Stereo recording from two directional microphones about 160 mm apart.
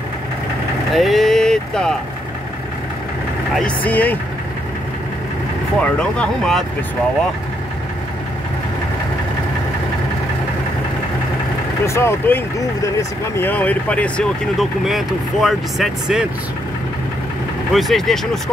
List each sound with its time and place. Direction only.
0.9 s a sound: centre (ahead or behind)
3.5 s speech: 10° left (ahead or behind)
5.8 s speech: 5° left (ahead or behind)
11.8 s speech: 15° left (ahead or behind); by 16.3 s 5° right (ahead or behind)
17.7 s speech: centre (ahead or behind)